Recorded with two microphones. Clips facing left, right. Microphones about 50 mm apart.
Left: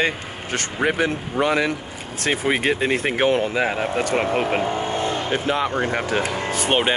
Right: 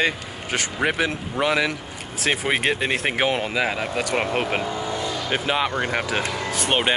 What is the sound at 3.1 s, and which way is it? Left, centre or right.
Speech, centre.